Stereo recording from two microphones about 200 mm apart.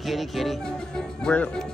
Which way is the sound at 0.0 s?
Centre (ahead or behind).